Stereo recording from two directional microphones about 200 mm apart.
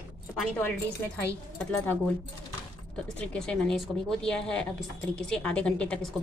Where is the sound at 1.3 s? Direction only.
5° left (ahead or behind).